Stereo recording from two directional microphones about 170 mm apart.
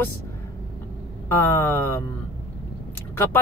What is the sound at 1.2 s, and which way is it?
Speech, 15° left (ahead or behind).